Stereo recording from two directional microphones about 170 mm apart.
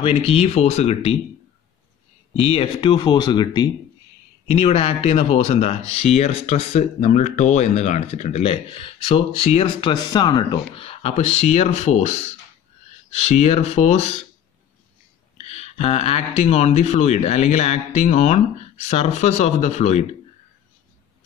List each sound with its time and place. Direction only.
0.3 s speech: 40° left (ahead or behind)
2.3 s speech: 35° left (ahead or behind)
4.5 s speech: 35° left (ahead or behind)
15.3 s speech: 40° left (ahead or behind)